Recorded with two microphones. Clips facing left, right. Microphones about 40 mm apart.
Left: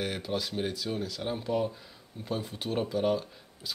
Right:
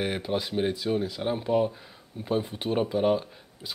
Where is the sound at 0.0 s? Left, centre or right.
Centre.